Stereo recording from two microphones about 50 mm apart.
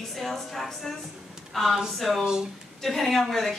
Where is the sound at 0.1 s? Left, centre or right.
Centre.